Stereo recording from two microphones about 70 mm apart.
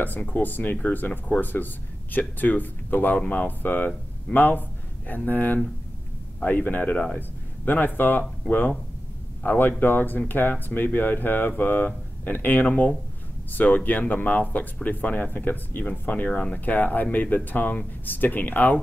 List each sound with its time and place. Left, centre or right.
0.0 s speech: left